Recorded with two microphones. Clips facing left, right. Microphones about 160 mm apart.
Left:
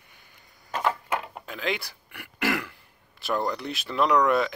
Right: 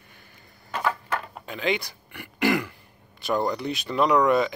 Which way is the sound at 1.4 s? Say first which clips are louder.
Right 4 dB; centre (ahead or behind).